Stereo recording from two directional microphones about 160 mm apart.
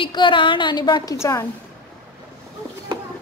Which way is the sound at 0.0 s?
30° left (ahead or behind).